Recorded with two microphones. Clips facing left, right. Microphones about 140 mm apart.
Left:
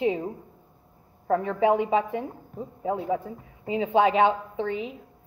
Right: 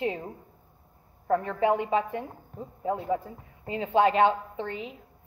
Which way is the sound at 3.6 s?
15° left (ahead or behind).